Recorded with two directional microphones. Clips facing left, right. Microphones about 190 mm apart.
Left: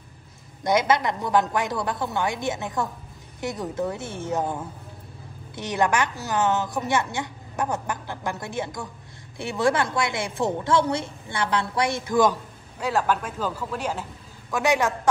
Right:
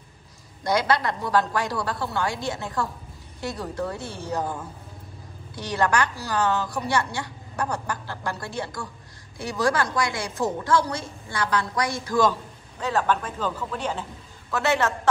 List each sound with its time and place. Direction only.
0.7 s a woman's voice: 20° left (ahead or behind)
5.6 s a woman's voice: 20° left (ahead or behind)